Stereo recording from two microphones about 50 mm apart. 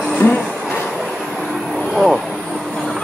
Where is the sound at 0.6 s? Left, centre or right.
Left.